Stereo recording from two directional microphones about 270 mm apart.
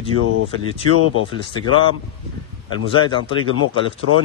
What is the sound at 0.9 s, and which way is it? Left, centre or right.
Speech, right.